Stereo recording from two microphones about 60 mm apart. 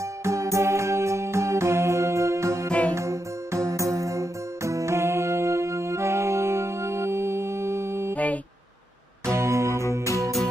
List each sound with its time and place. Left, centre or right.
0.2 s music: right
8.1 s a sound: left
9.2 s music: right
9.8 s music: left